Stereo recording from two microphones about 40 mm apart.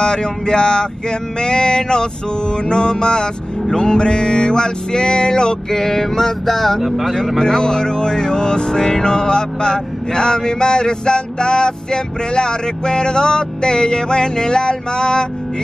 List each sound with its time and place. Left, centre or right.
0.0 s music: left
6.8 s speech: centre
7.3 s music: centre